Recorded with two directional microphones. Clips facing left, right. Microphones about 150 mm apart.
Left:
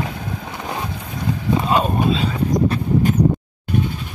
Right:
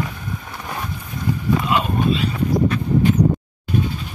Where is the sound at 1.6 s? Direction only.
35° left (ahead or behind).